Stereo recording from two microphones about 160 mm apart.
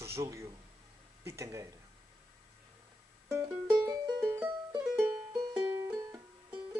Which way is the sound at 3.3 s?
10° right (ahead or behind).